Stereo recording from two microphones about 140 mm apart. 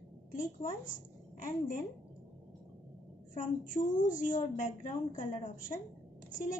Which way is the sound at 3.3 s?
70° left (ahead or behind).